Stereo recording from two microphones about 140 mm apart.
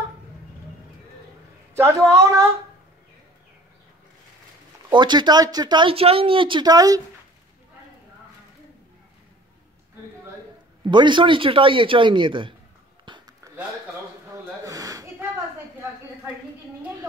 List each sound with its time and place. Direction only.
1.8 s a woman's voice: 20° right (ahead or behind)
4.9 s speech: 30° right (ahead or behind)
10.9 s speech: 35° right (ahead or behind)
13.0 s a sound: 35° right (ahead or behind)
14.6 s snort: 25° right (ahead or behind)